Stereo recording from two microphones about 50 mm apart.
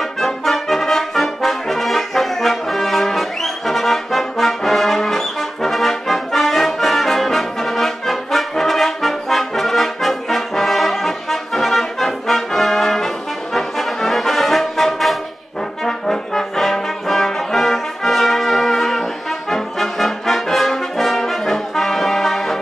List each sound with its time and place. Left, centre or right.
0.2 s brass instrument: centre
15.8 s trombone: centre
19.5 s brass instrument: centre